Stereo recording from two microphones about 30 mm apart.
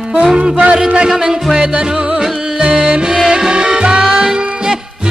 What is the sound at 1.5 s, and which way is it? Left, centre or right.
Music, right.